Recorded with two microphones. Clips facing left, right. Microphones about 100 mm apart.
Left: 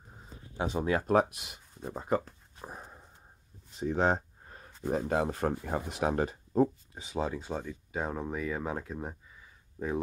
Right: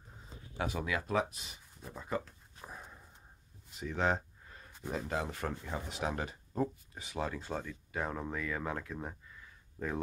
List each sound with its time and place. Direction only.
0.6 s speech: 25° left (ahead or behind)
0.8 s speech: 45° left (ahead or behind)
2.0 s speech: 40° left (ahead or behind)
2.6 s a sound: 25° left (ahead or behind)
4.9 s speech: 50° left (ahead or behind)
7.1 s speech: 20° left (ahead or behind)